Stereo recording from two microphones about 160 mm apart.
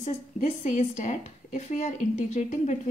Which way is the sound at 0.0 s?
45° left (ahead or behind).